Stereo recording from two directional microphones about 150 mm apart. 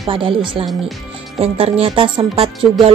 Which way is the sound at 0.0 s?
35° right (ahead or behind).